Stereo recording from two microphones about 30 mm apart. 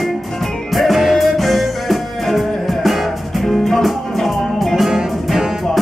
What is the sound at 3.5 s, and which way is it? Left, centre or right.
Music, centre.